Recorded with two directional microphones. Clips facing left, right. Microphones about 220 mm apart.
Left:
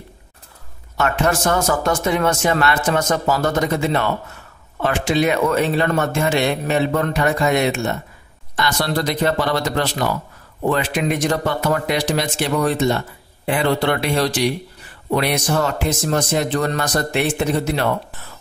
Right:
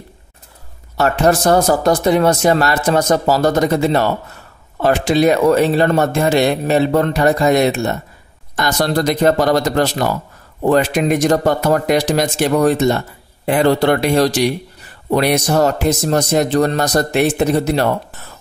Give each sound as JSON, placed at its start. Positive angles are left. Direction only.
{"t": 0.9, "sound": "speech", "side_deg": -35}